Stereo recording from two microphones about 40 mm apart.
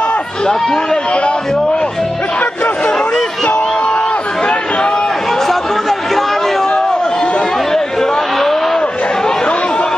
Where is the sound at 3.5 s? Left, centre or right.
Left.